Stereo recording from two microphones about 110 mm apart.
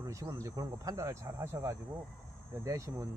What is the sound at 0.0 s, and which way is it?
Speech, 30° right (ahead or behind).